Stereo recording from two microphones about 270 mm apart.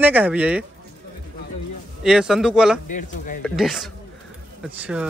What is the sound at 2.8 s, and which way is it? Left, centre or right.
Speech, left.